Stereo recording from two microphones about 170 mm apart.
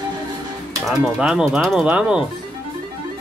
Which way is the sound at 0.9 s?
5° right (ahead or behind).